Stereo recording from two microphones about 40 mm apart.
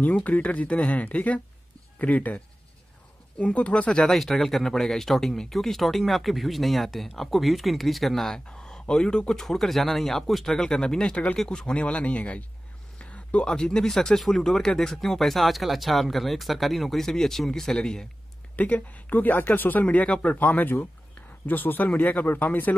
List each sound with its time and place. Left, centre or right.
0.0 s speech: left
4.0 s speech: centre
8.5 s speech: centre
9.4 s speech: centre
11.7 s speech: left
13.0 s a sound: left
13.5 s speech: centre
18.6 s speech: left